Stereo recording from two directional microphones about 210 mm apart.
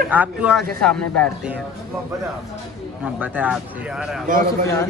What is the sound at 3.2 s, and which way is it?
Speech, 5° right (ahead or behind).